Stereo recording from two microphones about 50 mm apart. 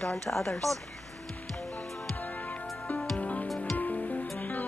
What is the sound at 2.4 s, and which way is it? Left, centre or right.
Music, left.